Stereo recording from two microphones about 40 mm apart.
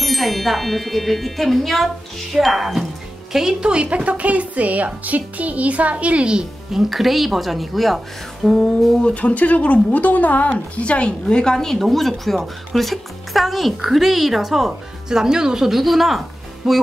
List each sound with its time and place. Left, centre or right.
0.0 s a woman's voice: centre
3.6 s speech: right
6.7 s a woman's voice: centre
9.0 s speech: left
10.8 s a woman's voice: left; by 16.7 s centre